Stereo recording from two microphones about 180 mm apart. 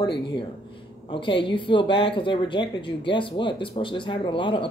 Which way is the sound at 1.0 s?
30° left (ahead or behind).